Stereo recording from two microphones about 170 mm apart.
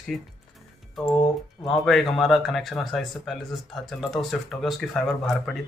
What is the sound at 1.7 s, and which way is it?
Speech, centre (ahead or behind).